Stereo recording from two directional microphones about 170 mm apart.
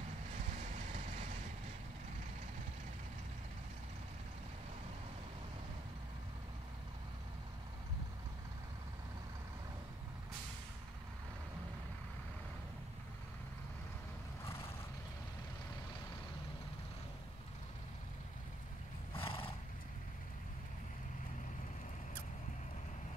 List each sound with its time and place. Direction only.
0.5 s vehicle: 50° right (ahead or behind)
19.1 s horse: 30° left (ahead or behind)